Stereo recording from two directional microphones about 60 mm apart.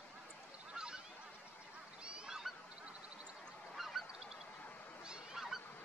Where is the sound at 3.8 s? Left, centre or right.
Centre.